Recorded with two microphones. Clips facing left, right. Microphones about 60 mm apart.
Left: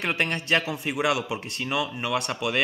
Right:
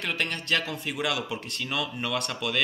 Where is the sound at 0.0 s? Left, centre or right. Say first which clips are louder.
Left 4 dB; left.